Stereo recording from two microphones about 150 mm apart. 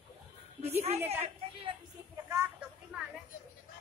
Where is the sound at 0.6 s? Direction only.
45° right (ahead or behind).